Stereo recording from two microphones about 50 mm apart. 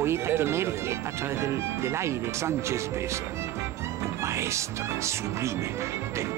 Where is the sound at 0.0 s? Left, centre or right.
Right.